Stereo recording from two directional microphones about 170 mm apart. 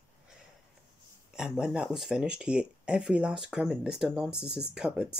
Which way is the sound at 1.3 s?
5° right (ahead or behind).